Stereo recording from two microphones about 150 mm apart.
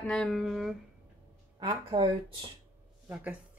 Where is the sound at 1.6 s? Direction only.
30° right (ahead or behind).